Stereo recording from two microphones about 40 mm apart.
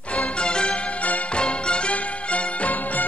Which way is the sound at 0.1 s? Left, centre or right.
Left.